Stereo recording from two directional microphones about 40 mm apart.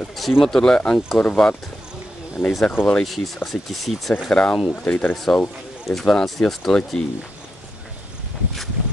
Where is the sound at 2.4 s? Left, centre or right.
Centre.